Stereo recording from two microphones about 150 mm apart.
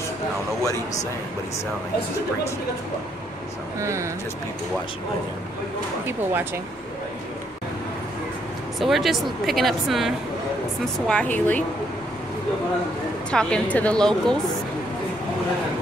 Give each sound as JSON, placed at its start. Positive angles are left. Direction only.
{"t": 3.8, "sound": "speech", "side_deg": -20}
{"t": 8.7, "sound": "a woman's voice", "side_deg": 0}
{"t": 13.3, "sound": "speech", "side_deg": 5}